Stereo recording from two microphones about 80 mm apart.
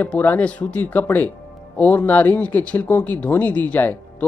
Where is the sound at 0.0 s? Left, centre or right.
Left.